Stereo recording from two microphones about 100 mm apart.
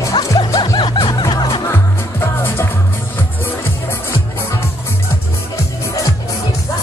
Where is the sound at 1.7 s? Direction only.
25° left (ahead or behind).